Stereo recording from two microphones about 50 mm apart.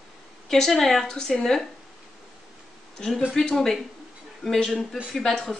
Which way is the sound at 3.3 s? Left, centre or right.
Centre.